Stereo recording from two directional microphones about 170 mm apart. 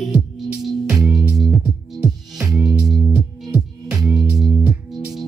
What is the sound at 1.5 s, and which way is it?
Music, 20° right (ahead or behind).